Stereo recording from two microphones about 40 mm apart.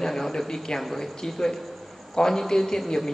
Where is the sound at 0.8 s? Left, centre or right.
Centre.